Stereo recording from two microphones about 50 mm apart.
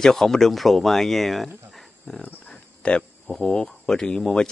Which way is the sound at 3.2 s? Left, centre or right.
Centre.